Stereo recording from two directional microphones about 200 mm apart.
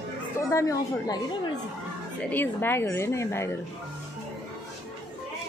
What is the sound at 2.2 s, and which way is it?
Speech, 10° left (ahead or behind).